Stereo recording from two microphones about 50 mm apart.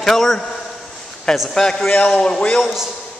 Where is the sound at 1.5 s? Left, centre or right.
Centre.